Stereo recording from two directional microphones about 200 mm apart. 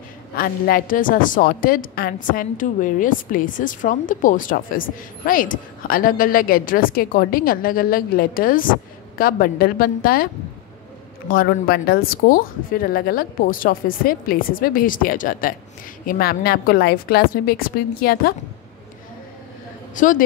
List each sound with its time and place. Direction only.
0.4 s a woman's voice: 45° left (ahead or behind)
20.0 s a woman's voice: 40° left (ahead or behind)